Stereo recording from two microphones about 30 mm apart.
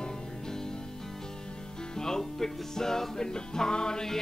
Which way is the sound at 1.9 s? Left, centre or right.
Centre.